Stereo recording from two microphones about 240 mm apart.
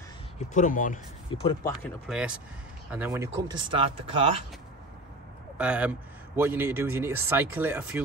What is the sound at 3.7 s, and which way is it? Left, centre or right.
Speech, right.